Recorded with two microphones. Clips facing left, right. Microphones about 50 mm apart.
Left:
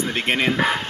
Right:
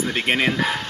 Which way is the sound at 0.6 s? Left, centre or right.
Centre.